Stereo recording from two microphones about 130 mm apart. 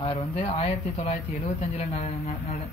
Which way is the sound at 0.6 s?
55° left (ahead or behind).